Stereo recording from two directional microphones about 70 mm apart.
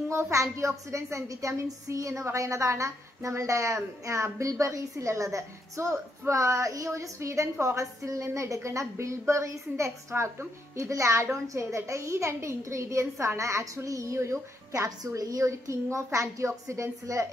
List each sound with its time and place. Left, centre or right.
0.1 s a woman's voice: right